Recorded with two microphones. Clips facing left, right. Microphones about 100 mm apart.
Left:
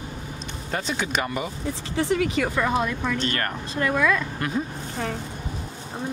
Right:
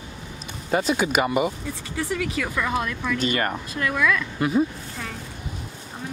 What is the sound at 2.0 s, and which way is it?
Speech, 30° left (ahead or behind).